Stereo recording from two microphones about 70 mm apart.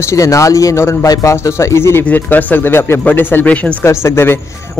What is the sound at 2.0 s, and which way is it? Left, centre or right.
Speech, left.